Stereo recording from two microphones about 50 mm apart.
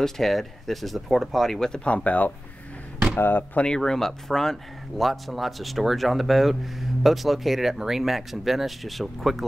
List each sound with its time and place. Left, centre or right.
0.0 s speech: centre
1.9 s speech: left
3.2 s speech: left
3.5 s speech: centre